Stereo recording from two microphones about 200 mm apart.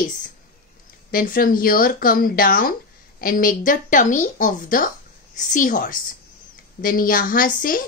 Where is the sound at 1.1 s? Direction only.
45° left (ahead or behind).